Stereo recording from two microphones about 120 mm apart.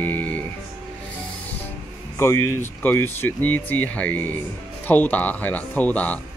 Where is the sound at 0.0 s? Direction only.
15° left (ahead or behind).